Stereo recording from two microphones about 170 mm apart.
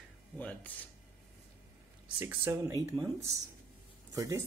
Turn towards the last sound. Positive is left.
turn(degrees=-20)  # may be behind; listen again after turning